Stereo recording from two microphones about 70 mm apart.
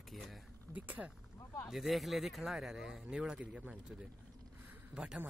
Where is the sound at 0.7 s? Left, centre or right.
Right.